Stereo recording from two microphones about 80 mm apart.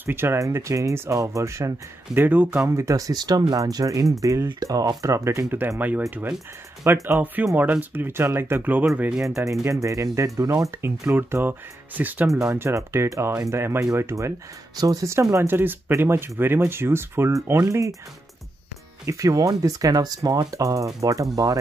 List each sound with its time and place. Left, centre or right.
0.0 s speech: right
2.1 s speech: right
2.7 s speech: right
5.8 s speech: right
6.8 s speech: right
7.5 s speech: centre
9.3 s speech: right
12.5 s speech: right
14.8 s speech: right
15.4 s speech: right
19.0 s speech: right